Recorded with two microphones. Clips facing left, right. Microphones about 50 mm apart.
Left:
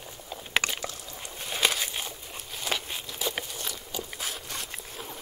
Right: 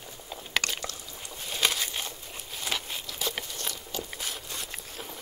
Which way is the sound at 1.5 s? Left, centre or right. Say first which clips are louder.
Left 1 dB; centre.